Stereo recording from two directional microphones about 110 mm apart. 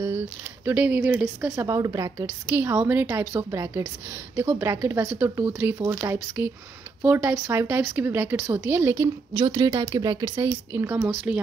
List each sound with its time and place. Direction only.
0.0 s speech: 20° right (ahead or behind)
1.5 s speech: 30° right (ahead or behind)
2.2 s a woman's voice: 20° right (ahead or behind)
9.4 s a woman's voice: 35° right (ahead or behind); by 11.4 s 10° right (ahead or behind)